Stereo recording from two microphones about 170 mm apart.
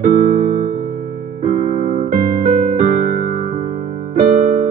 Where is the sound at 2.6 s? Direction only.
60° right (ahead or behind).